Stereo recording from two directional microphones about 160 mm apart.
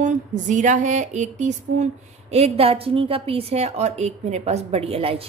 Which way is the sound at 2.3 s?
40° right (ahead or behind).